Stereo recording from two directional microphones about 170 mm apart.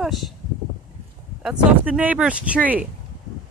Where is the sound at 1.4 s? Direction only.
10° right (ahead or behind).